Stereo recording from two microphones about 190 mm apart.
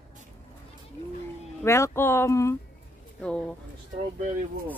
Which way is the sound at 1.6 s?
15° left (ahead or behind).